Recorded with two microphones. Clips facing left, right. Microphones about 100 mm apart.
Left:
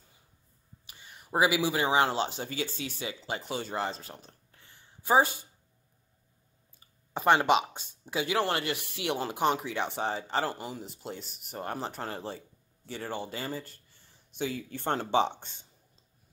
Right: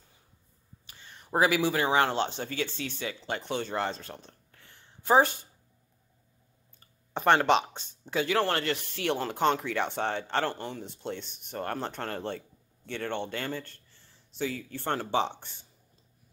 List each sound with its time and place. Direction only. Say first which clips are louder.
0.8 s speech: right 1 dB; 10° left (ahead or behind)
4.6 s a sound: right 2 dB; 5° left (ahead or behind)
7.2 s speech: right 1 dB; 10° left (ahead or behind)
14.5 s speech: left 1 dB; 50° right (ahead or behind)
14.8 s speech: left 2 dB; 20° left (ahead or behind)